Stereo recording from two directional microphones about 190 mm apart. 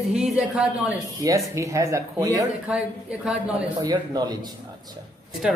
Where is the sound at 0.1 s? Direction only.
5° right (ahead or behind).